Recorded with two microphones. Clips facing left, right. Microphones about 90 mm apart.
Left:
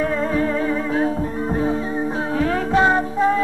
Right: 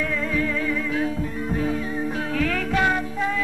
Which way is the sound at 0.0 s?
35° left (ahead or behind).